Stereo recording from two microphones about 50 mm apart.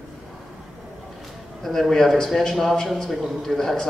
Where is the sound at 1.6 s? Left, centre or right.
Centre.